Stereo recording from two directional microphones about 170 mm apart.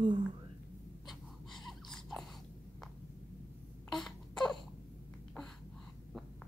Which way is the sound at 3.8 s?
Centre (ahead or behind).